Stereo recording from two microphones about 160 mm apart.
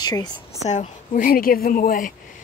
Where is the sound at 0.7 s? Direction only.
55° left (ahead or behind).